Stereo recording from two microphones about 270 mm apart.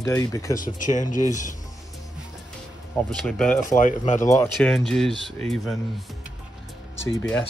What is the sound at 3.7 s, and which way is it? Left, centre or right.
Speech, left.